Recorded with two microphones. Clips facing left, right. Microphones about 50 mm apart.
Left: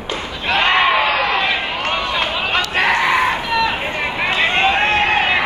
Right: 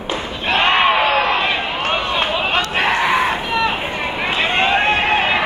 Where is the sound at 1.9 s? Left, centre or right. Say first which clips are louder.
Right 2 dB; right.